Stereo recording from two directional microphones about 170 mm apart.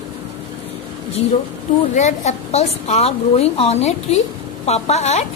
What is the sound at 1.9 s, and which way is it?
A woman's voice, 45° left (ahead or behind).